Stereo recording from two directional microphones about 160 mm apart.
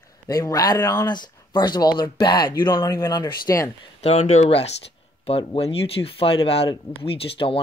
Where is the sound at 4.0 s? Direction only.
40° left (ahead or behind).